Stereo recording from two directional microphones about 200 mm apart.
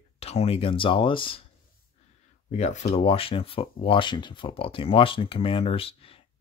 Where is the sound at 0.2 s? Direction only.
30° left (ahead or behind).